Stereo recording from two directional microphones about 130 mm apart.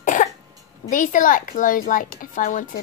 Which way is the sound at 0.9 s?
90° left.